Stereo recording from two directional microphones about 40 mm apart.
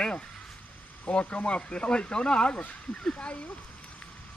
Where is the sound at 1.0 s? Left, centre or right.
Left.